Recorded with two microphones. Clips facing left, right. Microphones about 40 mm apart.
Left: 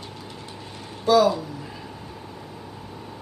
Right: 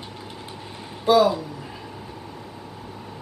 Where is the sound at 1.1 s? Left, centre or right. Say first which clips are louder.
Right 1 dB; centre.